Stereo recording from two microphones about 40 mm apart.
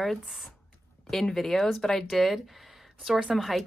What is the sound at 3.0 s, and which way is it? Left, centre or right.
Speech, centre.